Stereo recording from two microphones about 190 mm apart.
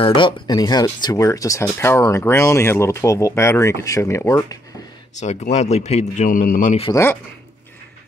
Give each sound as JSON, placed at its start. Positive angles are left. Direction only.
{"t": 0.0, "sound": "speech", "side_deg": 25}
{"t": 5.1, "sound": "speech", "side_deg": 40}
{"t": 6.9, "sound": "speech", "side_deg": 15}